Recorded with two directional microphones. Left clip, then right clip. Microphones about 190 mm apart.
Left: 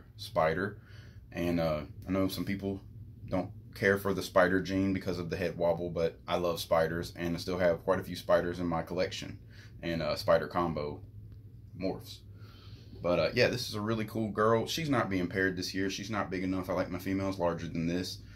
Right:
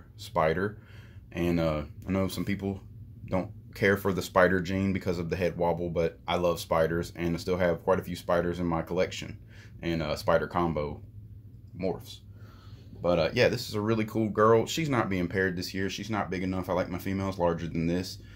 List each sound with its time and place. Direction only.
0.2 s speech: 50° right (ahead or behind)
13.0 s speech: 45° right (ahead or behind)